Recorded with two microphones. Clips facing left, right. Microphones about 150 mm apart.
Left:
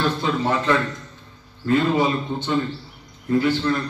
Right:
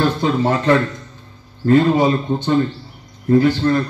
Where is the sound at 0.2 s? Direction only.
40° right (ahead or behind).